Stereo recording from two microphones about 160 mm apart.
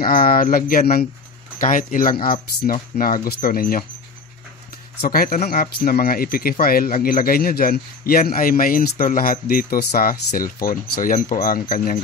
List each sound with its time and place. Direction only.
0.0 s speech: 65° left (ahead or behind)
5.0 s speech: 70° left (ahead or behind)